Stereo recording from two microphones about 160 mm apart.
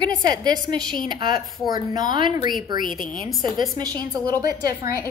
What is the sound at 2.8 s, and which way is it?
Speech, 60° left (ahead or behind).